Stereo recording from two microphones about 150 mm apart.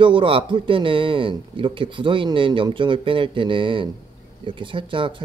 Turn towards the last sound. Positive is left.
turn(degrees=-35)  # may be behind; listen again after turning